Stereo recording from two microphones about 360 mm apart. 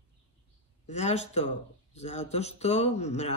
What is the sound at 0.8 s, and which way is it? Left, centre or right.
Speech, centre.